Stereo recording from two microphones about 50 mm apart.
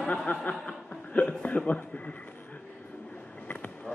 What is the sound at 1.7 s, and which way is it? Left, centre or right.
Speech, left.